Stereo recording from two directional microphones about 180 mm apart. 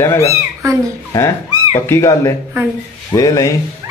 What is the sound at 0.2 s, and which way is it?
Speech, 15° right (ahead or behind).